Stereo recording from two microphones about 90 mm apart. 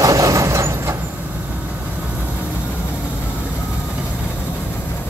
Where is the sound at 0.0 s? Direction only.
40° right (ahead or behind).